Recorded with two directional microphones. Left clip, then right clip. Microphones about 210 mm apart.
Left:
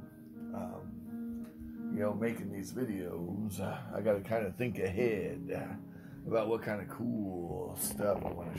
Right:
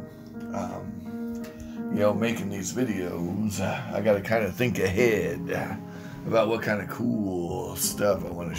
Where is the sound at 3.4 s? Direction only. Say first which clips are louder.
Right 10 dB; 25° left (ahead or behind).